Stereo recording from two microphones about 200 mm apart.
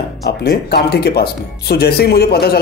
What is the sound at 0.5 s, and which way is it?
Speech, 50° left (ahead or behind).